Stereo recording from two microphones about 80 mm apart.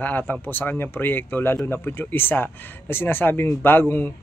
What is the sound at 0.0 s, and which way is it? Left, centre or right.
Speech, left.